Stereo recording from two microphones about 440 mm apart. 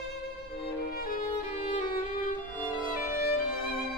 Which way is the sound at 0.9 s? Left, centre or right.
Centre.